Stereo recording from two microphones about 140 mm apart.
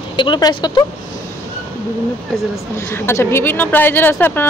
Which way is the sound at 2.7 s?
20° left (ahead or behind).